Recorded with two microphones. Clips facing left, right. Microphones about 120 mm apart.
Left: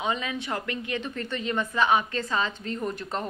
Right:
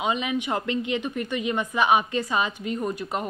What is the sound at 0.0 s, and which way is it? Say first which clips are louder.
A woman's voice: right 4 dB; 15° right (ahead or behind).